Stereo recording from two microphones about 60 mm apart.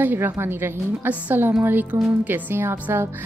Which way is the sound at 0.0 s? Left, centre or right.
Right.